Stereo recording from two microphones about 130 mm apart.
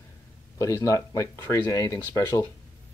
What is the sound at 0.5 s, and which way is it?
A man's voice, 25° left (ahead or behind).